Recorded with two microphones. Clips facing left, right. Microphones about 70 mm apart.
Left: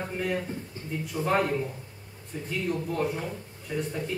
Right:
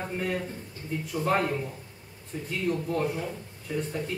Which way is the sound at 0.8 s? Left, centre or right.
Left.